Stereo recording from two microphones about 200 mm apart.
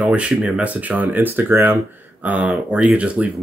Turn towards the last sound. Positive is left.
turn(degrees=-5)  # may be behind; listen again after turning